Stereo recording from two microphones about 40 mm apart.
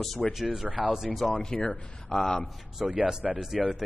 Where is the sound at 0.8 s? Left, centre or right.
Centre.